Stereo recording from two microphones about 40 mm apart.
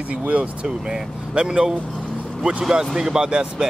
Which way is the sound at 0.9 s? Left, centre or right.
Right.